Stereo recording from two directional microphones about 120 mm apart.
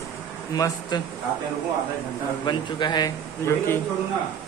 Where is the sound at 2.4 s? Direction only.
40° left (ahead or behind).